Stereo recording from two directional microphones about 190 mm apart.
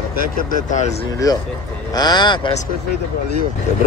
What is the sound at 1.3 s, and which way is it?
Speech, 20° left (ahead or behind).